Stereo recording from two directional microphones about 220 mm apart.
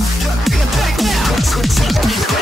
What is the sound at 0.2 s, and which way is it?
Music, centre (ahead or behind).